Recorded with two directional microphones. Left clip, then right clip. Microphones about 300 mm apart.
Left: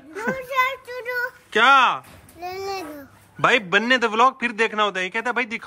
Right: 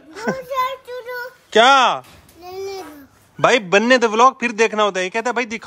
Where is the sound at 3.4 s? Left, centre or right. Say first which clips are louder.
Right 4 dB; centre.